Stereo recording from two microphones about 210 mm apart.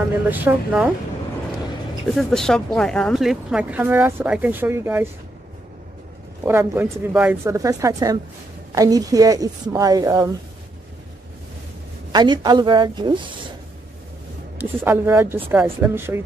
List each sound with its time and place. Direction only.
0.3 s a woman's voice: 10° right (ahead or behind)
2.0 s speech: centre (ahead or behind)
6.4 s a woman's voice: 10° right (ahead or behind)
12.1 s a woman's voice: 20° right (ahead or behind)
14.6 s a woman's voice: 10° right (ahead or behind)